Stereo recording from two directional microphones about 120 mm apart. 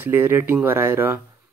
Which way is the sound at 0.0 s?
20° right (ahead or behind).